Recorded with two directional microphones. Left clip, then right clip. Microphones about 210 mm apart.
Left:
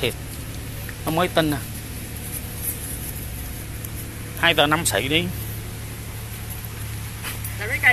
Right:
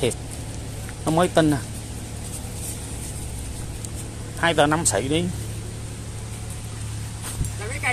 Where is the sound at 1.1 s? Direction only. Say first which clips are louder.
Right 2 dB; 30° right (ahead or behind).